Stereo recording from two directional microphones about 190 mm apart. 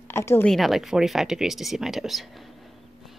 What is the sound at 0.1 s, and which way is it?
Speech, 15° left (ahead or behind).